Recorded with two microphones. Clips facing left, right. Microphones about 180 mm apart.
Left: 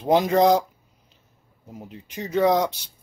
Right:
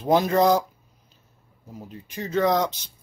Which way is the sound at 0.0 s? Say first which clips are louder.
Left 1 dB; 15° left (ahead or behind).